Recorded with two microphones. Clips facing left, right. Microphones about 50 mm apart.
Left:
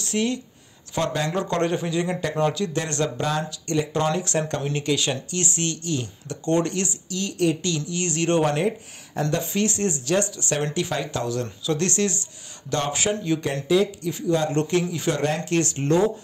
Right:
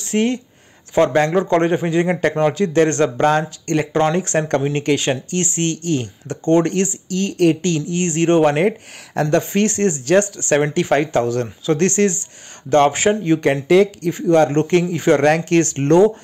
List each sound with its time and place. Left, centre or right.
0.0 s speech: right
8.5 s speech: right
9.1 s speech: right
9.4 s speech: right
13.7 s speech: right